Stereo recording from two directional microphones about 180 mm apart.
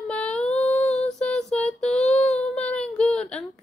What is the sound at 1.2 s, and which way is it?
Child singing, 5° left (ahead or behind).